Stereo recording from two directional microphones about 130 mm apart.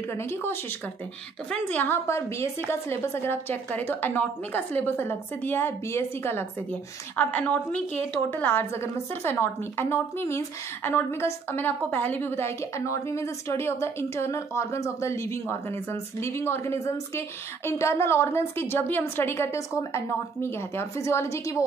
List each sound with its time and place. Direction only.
0.1 s a woman's voice: 20° left (ahead or behind)